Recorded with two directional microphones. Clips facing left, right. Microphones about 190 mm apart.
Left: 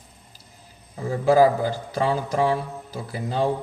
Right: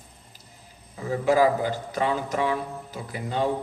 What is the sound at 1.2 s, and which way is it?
A man's voice, 35° left (ahead or behind).